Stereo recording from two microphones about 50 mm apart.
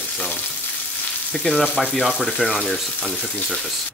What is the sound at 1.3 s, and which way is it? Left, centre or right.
Speech, centre.